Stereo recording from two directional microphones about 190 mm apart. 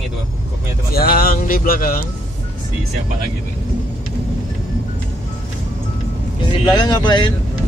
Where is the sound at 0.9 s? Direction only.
50° left (ahead or behind).